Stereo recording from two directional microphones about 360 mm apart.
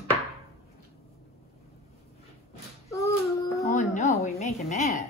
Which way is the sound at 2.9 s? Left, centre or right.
Centre.